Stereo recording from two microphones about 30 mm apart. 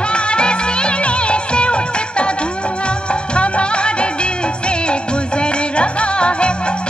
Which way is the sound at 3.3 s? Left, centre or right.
Left.